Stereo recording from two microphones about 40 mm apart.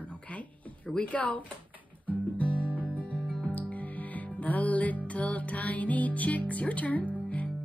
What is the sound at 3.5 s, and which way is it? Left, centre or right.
Music, left.